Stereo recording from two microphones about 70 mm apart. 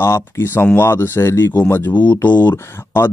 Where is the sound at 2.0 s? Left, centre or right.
Left.